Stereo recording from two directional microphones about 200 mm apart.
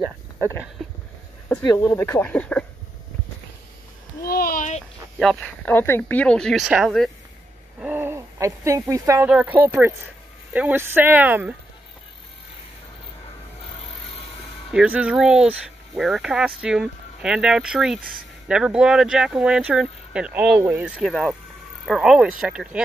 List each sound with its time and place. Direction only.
0.0 s speech: 10° right (ahead or behind)
1.7 s speech: 10° left (ahead or behind)
4.2 s a sound: 50° left (ahead or behind)
5.2 s speech: centre (ahead or behind)
7.8 s a sound: 10° right (ahead or behind)
9.3 s speech: 5° right (ahead or behind)
14.7 s speech: 5° right (ahead or behind)